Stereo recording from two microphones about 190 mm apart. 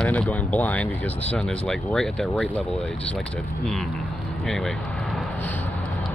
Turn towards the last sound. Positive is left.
turn(degrees=10)  # may be behind; listen again after turning